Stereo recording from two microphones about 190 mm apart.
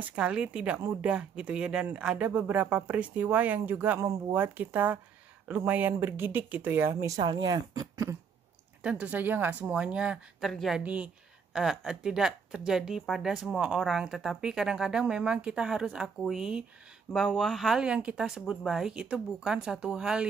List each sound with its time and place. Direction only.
0.0 s speech: 5° right (ahead or behind)